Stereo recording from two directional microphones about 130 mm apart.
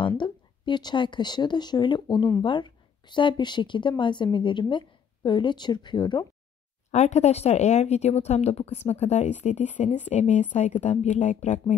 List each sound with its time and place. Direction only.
0.2 s speech: 35° left (ahead or behind)
6.9 s speech: 60° left (ahead or behind)